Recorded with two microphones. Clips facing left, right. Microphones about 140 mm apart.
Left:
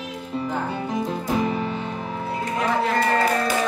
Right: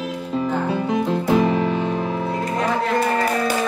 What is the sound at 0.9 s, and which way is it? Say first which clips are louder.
Music: right 6 dB; 90° right.